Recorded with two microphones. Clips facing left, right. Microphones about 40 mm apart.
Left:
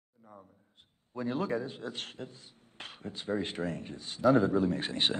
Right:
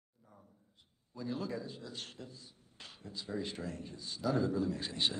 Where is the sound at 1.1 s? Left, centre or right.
Left.